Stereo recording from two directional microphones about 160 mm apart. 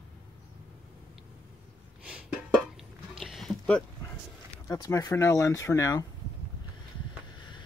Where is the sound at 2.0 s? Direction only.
5° right (ahead or behind).